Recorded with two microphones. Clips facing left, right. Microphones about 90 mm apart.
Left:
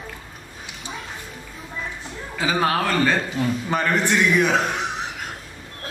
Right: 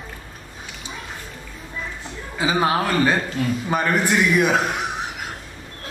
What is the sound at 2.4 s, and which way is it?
A man's voice, 15° right (ahead or behind).